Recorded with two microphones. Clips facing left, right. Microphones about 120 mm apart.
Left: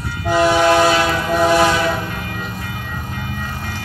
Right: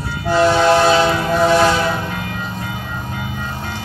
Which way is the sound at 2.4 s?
25° right (ahead or behind).